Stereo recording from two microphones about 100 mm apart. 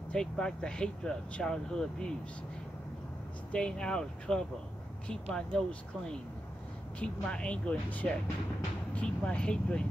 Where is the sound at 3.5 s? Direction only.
10° left (ahead or behind).